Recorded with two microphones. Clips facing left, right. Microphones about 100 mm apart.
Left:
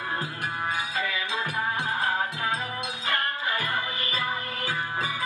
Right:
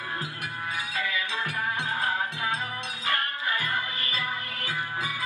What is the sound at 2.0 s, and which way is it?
Music, 30° left (ahead or behind).